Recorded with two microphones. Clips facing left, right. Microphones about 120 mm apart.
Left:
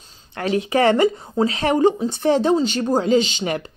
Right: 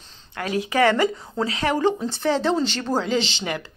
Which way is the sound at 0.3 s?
25° left (ahead or behind).